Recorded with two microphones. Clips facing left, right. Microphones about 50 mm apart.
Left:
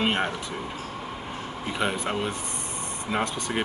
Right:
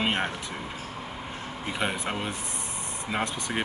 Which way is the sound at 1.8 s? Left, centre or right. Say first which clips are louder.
Left 2 dB; centre.